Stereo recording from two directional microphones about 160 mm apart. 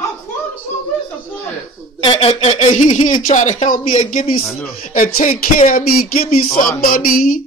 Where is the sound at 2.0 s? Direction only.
35° left (ahead or behind); by 4.3 s 55° left (ahead or behind).